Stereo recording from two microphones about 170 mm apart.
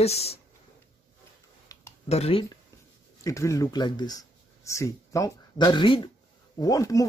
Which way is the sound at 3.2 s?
20° left (ahead or behind).